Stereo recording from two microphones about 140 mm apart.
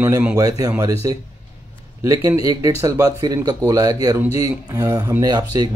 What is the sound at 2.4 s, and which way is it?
Speech, 25° right (ahead or behind).